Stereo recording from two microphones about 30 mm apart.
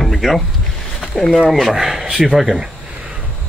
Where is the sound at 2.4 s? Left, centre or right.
Right.